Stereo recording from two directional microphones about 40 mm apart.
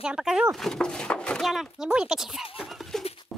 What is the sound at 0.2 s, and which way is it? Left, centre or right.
Speech, centre.